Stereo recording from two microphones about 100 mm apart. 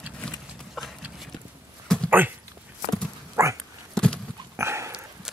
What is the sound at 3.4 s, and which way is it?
Dog, 25° right (ahead or behind).